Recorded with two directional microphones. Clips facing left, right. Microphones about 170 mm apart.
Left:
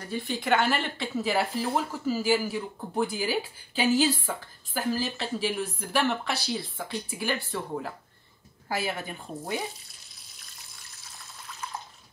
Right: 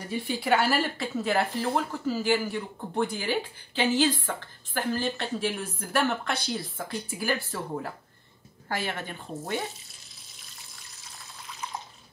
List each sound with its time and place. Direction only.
0.1 s a woman's voice: 10° right (ahead or behind); by 9.1 s 10° left (ahead or behind)